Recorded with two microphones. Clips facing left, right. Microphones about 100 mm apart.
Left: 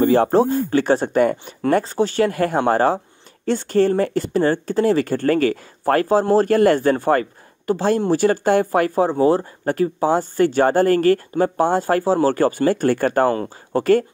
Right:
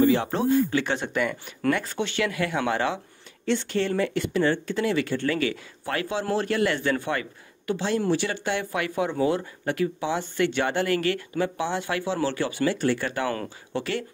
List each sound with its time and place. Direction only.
0.0 s a man's voice: 45° left (ahead or behind)